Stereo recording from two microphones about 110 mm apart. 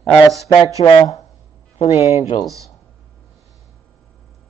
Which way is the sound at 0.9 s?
30° left (ahead or behind).